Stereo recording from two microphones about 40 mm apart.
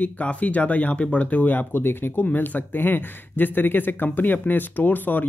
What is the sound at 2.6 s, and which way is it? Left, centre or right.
Speech, left.